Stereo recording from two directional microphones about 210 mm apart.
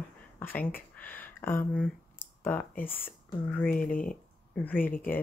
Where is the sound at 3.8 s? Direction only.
40° left (ahead or behind).